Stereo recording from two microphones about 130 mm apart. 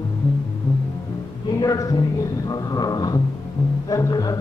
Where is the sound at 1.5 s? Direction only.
30° left (ahead or behind).